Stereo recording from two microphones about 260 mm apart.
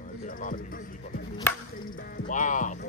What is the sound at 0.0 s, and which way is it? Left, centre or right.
Speech, left.